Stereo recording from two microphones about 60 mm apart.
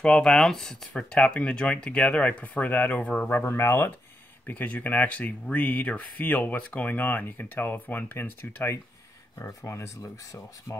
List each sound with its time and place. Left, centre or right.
0.0 s speech: centre
3.3 s speech: left
4.5 s speech: left
10.0 s speech: left